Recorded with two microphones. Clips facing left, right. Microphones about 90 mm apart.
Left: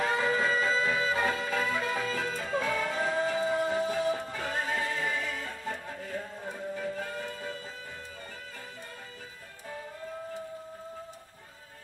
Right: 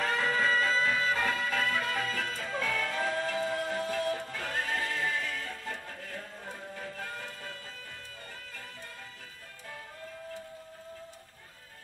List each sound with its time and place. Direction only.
0.0 s music: 15° left (ahead or behind)